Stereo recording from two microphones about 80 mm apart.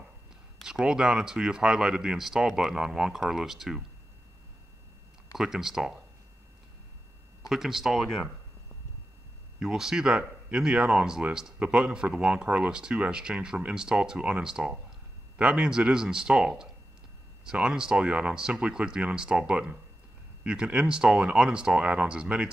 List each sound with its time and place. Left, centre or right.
0.6 s speech: centre
5.3 s speech: centre
7.4 s speech: centre
9.6 s speech: centre